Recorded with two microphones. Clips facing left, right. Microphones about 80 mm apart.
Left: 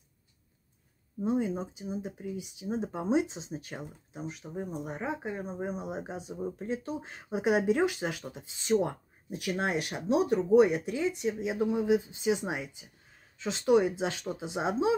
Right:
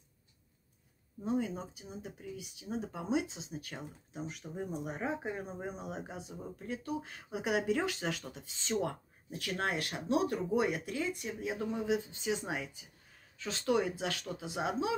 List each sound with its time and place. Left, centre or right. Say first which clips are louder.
1.2 s speech: left 5 dB; left
4.1 s speech: left 3 dB; centre
5.9 s speech: left 5 dB; centre